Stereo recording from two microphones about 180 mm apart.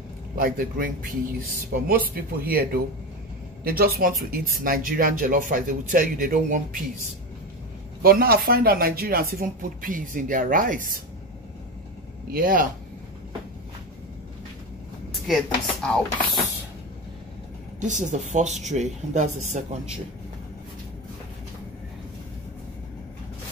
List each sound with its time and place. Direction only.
0.4 s speech: 55° right (ahead or behind)
8.0 s speech: 55° right (ahead or behind)
12.3 s speech: 50° right (ahead or behind)
15.2 s speech: centre (ahead or behind)
17.7 s speech: 45° right (ahead or behind)